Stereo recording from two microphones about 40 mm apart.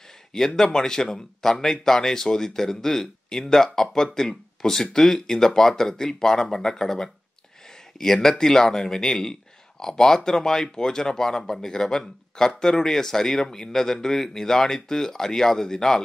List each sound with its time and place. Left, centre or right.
0.6 s speech: centre